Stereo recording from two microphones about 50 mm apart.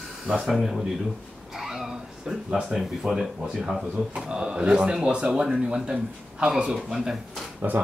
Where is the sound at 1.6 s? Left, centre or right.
Centre.